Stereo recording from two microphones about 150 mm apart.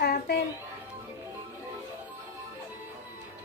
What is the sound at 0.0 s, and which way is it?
Music, 90° left.